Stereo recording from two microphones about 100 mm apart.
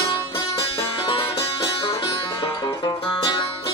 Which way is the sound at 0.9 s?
65° left (ahead or behind).